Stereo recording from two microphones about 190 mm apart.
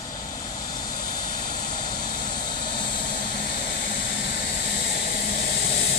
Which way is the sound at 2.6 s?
25° left (ahead or behind).